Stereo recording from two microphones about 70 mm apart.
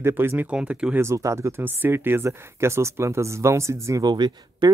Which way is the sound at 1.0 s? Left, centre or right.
Right.